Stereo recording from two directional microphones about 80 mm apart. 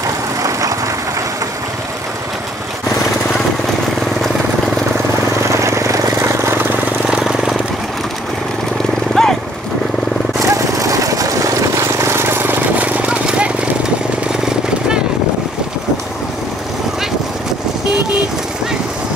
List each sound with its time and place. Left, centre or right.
0.4 s vehicle: right
5.5 s vehicle: right
7.1 s vehicle: centre
9.2 s horse: centre
10.5 s jackhammer: right; by 13.5 s centre